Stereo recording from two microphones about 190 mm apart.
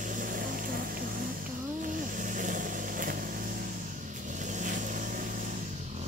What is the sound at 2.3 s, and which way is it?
Vehicle, 45° right (ahead or behind).